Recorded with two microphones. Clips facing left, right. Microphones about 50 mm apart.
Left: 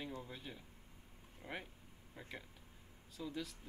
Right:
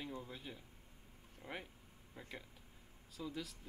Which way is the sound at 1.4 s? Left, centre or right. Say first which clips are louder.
Left 1 dB; centre.